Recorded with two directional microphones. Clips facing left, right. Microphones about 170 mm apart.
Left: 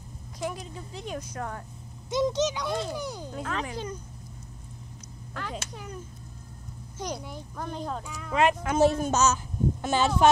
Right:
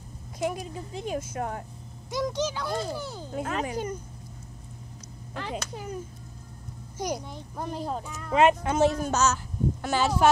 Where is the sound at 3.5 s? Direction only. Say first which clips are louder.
Right 3 dB; 45° right (ahead or behind).